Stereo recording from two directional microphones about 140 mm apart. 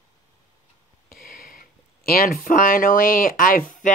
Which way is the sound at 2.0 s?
90° left.